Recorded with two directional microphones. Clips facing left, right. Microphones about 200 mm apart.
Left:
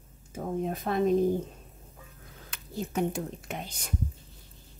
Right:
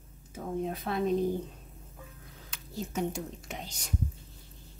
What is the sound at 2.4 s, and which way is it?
Speech, 55° left (ahead or behind).